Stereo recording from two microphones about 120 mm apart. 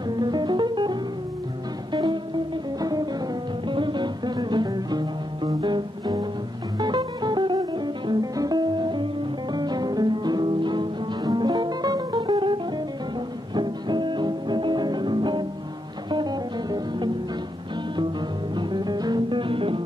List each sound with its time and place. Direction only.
0.2 s music: 40° right (ahead or behind)
13.6 s music: 40° right (ahead or behind)
18.6 s music: 40° right (ahead or behind)